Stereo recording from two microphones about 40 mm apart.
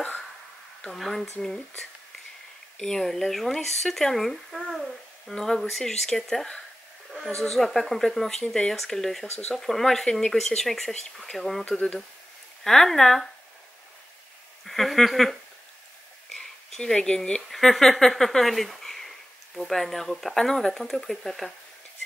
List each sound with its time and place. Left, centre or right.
0.9 s speech: centre
2.8 s speech: centre
14.6 s speech: centre
16.3 s a sound: centre
17.5 s speech: centre